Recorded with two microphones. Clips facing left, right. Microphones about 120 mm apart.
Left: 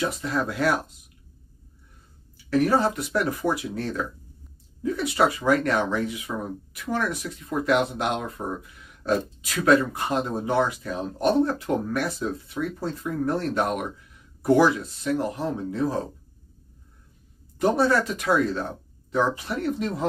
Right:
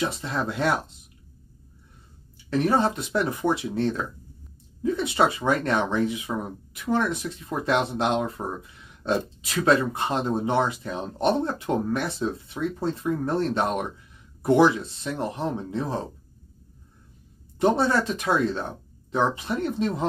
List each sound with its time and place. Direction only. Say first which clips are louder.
0.0 s speech: left 1 dB; 25° right (ahead or behind)
2.5 s speech: left 1 dB; 25° right (ahead or behind)
17.6 s speech: even; 25° right (ahead or behind)